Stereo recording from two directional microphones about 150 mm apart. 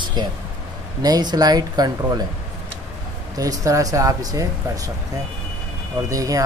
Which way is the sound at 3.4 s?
25° right (ahead or behind).